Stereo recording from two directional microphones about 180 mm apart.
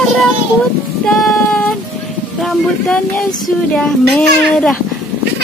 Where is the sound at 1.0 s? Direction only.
5° left (ahead or behind).